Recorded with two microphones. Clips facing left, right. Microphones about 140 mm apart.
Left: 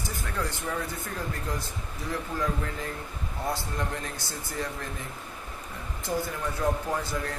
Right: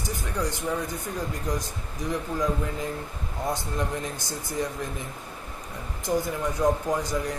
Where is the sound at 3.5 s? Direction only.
15° right (ahead or behind).